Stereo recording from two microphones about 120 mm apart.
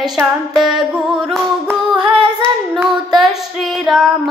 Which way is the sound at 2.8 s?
Centre (ahead or behind).